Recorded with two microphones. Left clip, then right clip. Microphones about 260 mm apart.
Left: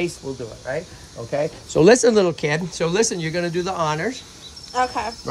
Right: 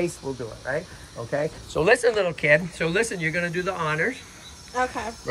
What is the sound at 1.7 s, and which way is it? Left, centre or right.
Speech, left.